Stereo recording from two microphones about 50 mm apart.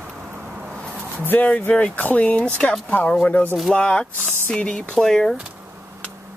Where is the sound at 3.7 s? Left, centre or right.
Centre.